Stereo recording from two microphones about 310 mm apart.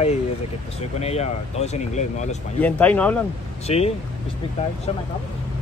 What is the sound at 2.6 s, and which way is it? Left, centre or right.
Speech, centre.